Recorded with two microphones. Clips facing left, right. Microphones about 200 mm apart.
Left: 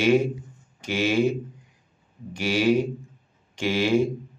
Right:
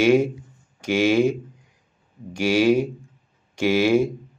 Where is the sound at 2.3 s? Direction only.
10° right (ahead or behind).